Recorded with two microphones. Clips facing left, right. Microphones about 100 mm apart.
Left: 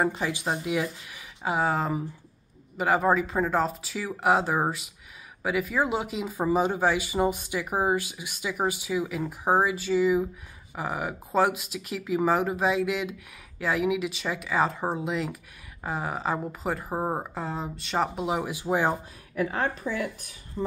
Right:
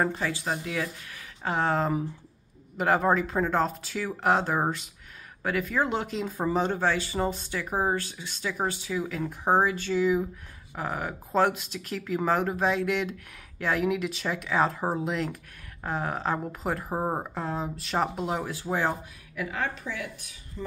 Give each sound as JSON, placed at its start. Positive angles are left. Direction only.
{"t": 0.0, "sound": "speech", "side_deg": 15}
{"t": 19.3, "sound": "a woman's voice", "side_deg": 35}